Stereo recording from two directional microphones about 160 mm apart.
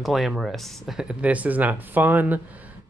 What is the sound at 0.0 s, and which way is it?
Speech, centre (ahead or behind).